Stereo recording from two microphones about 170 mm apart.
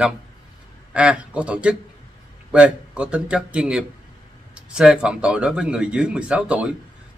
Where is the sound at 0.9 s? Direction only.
5° right (ahead or behind).